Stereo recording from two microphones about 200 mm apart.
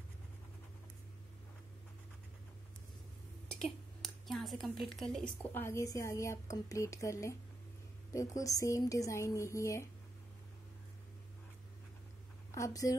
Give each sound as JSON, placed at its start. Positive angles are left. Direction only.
{"t": 3.4, "sound": "speech", "side_deg": 0}
{"t": 12.4, "sound": "a woman's voice", "side_deg": 15}